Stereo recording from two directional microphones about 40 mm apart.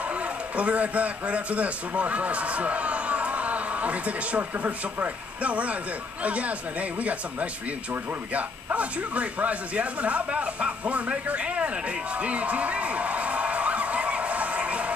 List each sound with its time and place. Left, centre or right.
0.1 s a man's voice: right
4.4 s a man's voice: right